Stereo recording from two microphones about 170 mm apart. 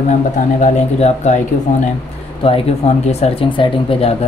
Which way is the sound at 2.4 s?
35° left (ahead or behind).